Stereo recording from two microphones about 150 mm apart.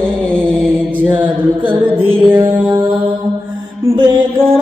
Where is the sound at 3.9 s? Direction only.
30° right (ahead or behind).